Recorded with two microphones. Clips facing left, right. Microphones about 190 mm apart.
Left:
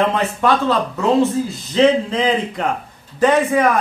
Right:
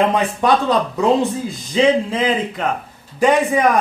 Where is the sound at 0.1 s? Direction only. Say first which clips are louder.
Right 1 dB; 15° right (ahead or behind).